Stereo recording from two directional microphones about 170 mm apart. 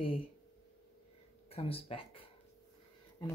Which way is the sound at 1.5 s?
35° left (ahead or behind).